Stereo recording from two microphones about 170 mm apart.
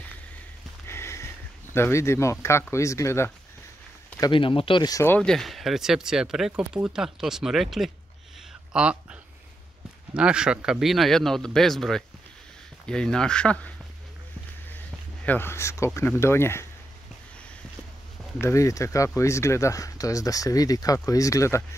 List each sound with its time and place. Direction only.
0.8 s a sound: 15° left (ahead or behind)
2.4 s speech: 15° left (ahead or behind)
4.2 s speech: 30° left (ahead or behind); by 13.7 s 10° left (ahead or behind)
15.2 s speech: 10° left (ahead or behind)
18.4 s speech: 20° left (ahead or behind)